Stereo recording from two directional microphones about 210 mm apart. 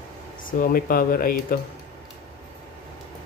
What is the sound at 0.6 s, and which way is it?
Speech, 45° left (ahead or behind).